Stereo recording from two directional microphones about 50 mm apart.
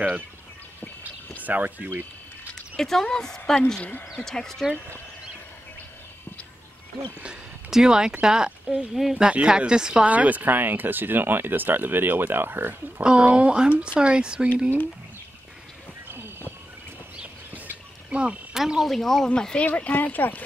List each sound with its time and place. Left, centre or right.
1.4 s speech: right
2.8 s a woman's voice: centre
7.7 s speech: centre
10.0 s speech: right
13.0 s speech: right
16.1 s a sound: right
17.5 s bird: right
18.1 s speech: right
18.5 s speech: centre
19.2 s speech: centre
19.6 s speech: left